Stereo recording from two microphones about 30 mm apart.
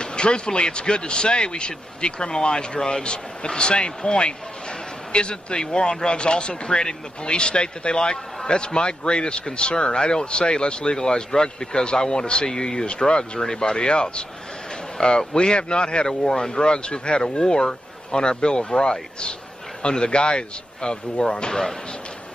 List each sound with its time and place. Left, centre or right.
0.0 s speech: left
5.1 s speech: left
12.4 s speech: left
12.7 s speech: left
13.0 s speech: left
16.1 s speech: left